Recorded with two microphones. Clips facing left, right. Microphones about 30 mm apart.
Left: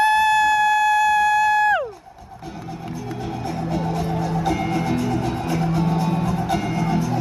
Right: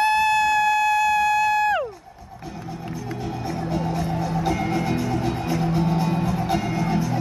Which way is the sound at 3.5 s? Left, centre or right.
Centre.